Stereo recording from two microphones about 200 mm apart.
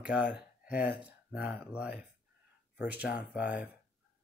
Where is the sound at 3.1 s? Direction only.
5° right (ahead or behind).